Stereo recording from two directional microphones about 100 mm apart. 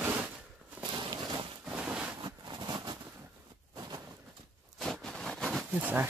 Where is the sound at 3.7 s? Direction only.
40° right (ahead or behind).